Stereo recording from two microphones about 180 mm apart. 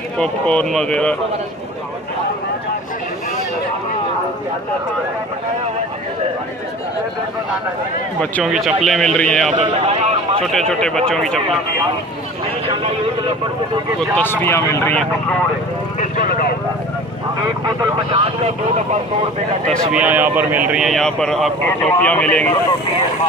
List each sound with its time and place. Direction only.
0.2 s a man's voice: 5° left (ahead or behind)
8.2 s a man's voice: 5° left (ahead or behind)
9.5 s speech: 35° right (ahead or behind)
10.4 s a man's voice: centre (ahead or behind)
14.1 s speech: 10° left (ahead or behind)
16.0 s speech: 55° left (ahead or behind)
17.6 s speech: 25° right (ahead or behind)
19.9 s a man's voice: 10° right (ahead or behind); by 22.5 s 10° left (ahead or behind)